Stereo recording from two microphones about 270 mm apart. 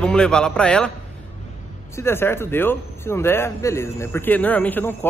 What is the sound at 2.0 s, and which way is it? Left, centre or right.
A man's voice, centre.